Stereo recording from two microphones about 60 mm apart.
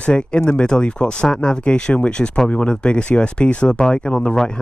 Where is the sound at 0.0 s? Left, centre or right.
Centre.